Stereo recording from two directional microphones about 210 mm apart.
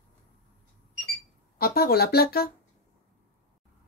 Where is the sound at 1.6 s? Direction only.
45° left (ahead or behind).